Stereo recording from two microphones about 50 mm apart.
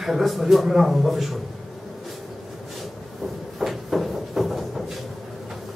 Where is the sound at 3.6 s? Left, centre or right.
Centre.